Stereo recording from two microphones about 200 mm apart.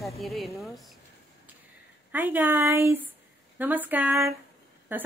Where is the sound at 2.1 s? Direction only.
10° right (ahead or behind).